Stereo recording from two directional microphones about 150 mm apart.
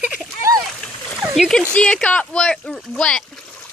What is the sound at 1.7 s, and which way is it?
Speech, 5° left (ahead or behind).